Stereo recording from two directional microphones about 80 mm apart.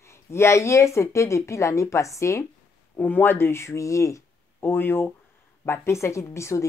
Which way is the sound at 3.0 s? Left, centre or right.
Left.